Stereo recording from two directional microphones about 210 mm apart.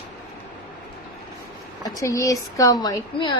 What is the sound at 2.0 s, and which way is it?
A woman's voice, 15° left (ahead or behind).